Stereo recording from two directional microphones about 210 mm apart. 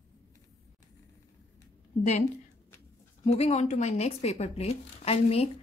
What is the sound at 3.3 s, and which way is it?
Speech, 30° left (ahead or behind).